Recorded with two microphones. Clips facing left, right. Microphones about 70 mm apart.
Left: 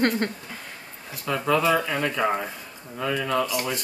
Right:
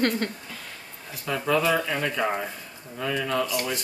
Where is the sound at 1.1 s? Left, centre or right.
Centre.